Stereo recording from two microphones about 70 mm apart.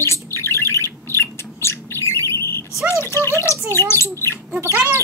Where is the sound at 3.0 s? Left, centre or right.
Left.